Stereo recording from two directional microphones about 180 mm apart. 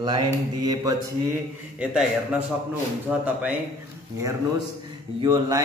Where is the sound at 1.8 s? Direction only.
5° right (ahead or behind).